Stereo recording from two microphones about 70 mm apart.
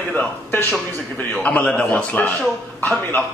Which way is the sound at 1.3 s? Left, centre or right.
Centre.